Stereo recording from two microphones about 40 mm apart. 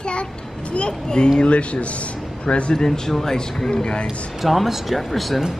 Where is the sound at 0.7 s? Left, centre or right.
Left.